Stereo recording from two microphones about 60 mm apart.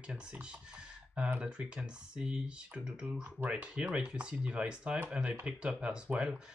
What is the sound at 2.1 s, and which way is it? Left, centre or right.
Speech, centre.